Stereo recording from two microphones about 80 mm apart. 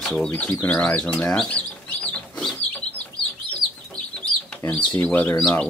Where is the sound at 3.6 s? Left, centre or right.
Right.